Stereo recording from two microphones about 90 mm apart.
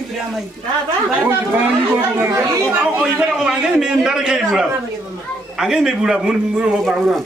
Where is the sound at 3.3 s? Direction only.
10° right (ahead or behind).